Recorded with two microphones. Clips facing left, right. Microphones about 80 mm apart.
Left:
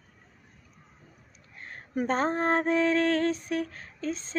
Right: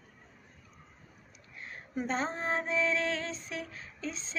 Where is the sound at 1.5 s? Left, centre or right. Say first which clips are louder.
Left 5 dB; left.